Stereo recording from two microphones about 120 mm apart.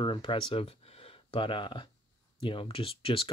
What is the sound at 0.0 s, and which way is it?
Speech, 45° left (ahead or behind).